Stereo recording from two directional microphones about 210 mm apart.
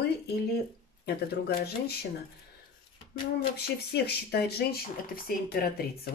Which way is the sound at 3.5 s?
50° left (ahead or behind).